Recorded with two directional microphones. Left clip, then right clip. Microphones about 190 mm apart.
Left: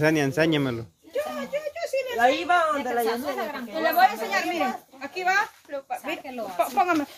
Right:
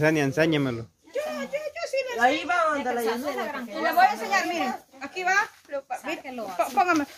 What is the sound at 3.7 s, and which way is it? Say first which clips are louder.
Speech: left 1 dB; 10° right (ahead or behind).